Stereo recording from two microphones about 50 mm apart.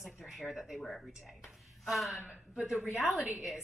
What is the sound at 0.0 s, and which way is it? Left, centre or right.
Speech, centre.